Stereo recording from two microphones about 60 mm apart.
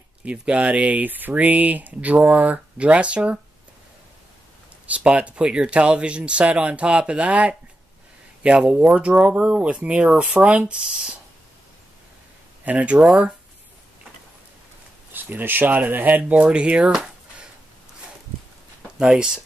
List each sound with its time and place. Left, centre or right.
0.2 s speech: right
4.8 s speech: right
12.6 s speech: right
15.1 s speech: right
16.9 s a sound: centre
18.9 s speech: centre